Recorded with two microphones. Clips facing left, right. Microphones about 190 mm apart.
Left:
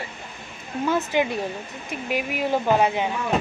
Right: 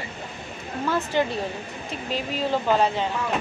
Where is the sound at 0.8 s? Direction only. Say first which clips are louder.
Left 1 dB; 15° left (ahead or behind).